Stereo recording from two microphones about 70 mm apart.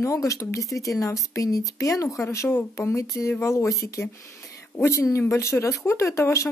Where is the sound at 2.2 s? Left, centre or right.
Left.